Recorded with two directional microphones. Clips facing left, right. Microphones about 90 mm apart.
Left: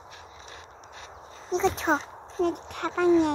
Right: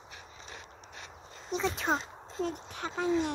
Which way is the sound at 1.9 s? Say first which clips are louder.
Left 5 dB; 75° left (ahead or behind).